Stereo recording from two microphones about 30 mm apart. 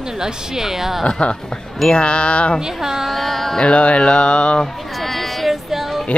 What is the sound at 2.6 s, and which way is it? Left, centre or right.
Speech, centre.